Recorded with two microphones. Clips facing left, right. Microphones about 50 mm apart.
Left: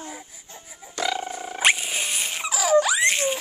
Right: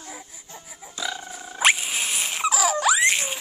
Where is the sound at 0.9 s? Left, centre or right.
Left.